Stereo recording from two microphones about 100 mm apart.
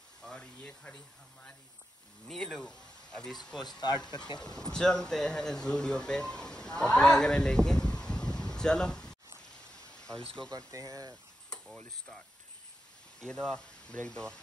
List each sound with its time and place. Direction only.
0.2 s speech: 10° left (ahead or behind)
2.2 s speech: 5° left (ahead or behind)
9.7 s pink noise: 10° left (ahead or behind)
10.7 s speech: 35° right (ahead or behind)
11.5 s speech: 5° left (ahead or behind)
13.2 s speech: 5° left (ahead or behind)